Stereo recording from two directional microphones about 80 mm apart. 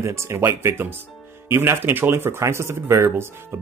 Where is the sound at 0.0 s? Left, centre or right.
Right.